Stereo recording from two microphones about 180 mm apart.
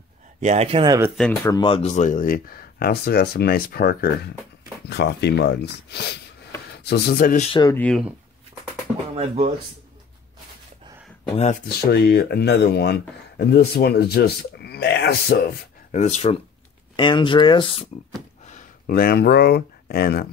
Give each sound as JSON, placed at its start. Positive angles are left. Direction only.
{"t": 0.4, "sound": "speech", "side_deg": -40}
{"t": 1.4, "sound": "speech", "side_deg": 25}
{"t": 7.4, "sound": "speech", "side_deg": 25}
{"t": 7.7, "sound": "speech", "side_deg": 5}
{"t": 9.1, "sound": "speech", "side_deg": -35}
{"t": 11.3, "sound": "speech", "side_deg": 40}
{"t": 11.6, "sound": "speech", "side_deg": 60}
{"t": 15.9, "sound": "speech", "side_deg": 40}
{"t": 16.9, "sound": "speech", "side_deg": 25}
{"t": 18.4, "sound": "speech", "side_deg": 45}